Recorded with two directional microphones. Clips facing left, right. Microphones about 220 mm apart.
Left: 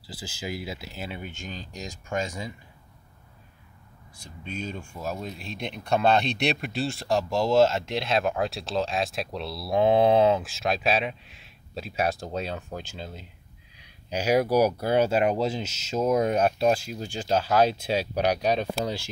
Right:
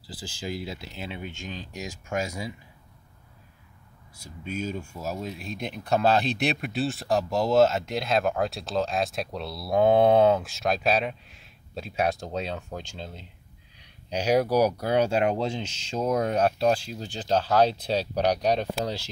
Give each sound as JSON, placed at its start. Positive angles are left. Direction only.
{"t": 0.0, "sound": "speech", "side_deg": 10}
{"t": 4.2, "sound": "speech", "side_deg": -5}
{"t": 13.7, "sound": "a sound", "side_deg": 10}
{"t": 14.8, "sound": "speech", "side_deg": 5}